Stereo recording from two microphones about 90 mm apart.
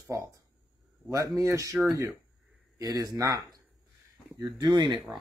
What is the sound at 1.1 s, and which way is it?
Speech, 35° right (ahead or behind).